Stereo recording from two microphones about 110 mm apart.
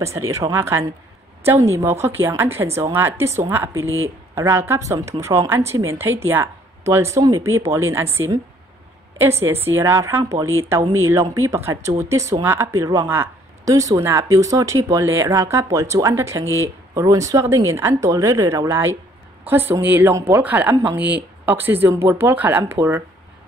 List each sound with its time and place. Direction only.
0.0 s speech: 25° right (ahead or behind)
9.8 s a woman's voice: 25° right (ahead or behind)